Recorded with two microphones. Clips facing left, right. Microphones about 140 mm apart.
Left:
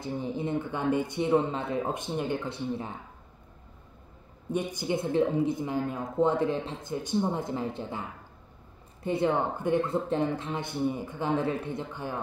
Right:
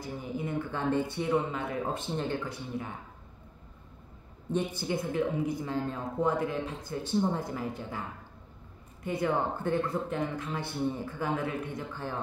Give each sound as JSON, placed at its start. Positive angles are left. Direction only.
{"t": 0.0, "sound": "speech", "side_deg": 30}
{"t": 4.5, "sound": "speech", "side_deg": 10}
{"t": 6.2, "sound": "speech", "side_deg": 25}
{"t": 9.0, "sound": "speech", "side_deg": 25}
{"t": 10.8, "sound": "speech", "side_deg": 15}
{"t": 11.9, "sound": "speech", "side_deg": 15}